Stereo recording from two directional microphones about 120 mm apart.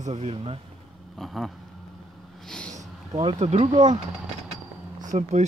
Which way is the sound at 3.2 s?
55° right (ahead or behind).